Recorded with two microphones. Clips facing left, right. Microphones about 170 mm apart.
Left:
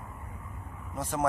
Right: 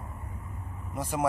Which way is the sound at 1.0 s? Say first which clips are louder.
Right 1 dB; 10° right (ahead or behind).